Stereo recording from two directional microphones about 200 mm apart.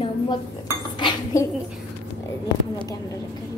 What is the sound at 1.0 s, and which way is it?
Speech, 20° left (ahead or behind).